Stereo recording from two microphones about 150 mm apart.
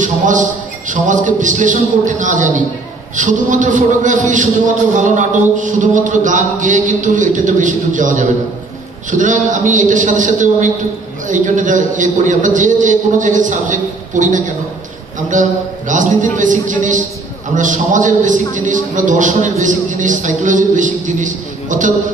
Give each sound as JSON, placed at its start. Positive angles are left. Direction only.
{"t": 0.0, "sound": "a man's voice", "side_deg": -60}